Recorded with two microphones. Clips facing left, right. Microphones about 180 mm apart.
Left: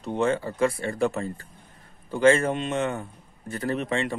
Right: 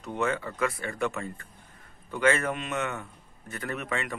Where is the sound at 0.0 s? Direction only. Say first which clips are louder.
Left 5 dB; 30° left (ahead or behind).